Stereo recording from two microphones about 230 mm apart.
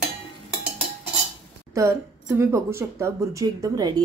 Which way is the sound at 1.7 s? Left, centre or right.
Centre.